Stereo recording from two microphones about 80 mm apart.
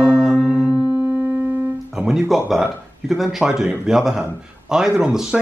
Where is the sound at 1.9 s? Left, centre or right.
Centre.